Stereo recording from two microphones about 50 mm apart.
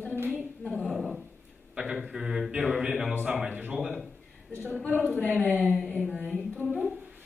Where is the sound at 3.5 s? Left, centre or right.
Right.